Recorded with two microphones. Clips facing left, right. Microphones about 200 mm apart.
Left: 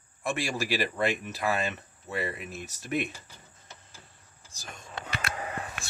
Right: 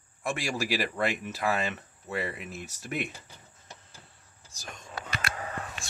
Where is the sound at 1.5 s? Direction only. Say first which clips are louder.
Even; 5° right (ahead or behind).